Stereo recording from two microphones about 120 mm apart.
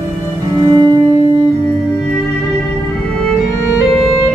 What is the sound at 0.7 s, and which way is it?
Cello, 35° right (ahead or behind).